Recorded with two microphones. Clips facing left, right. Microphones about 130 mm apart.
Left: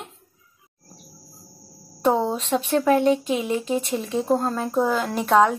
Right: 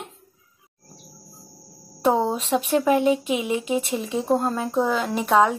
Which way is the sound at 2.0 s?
5° right (ahead or behind).